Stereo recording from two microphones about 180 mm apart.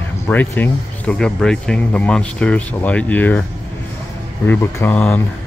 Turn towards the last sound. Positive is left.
turn(degrees=10)  # may be behind; listen again after turning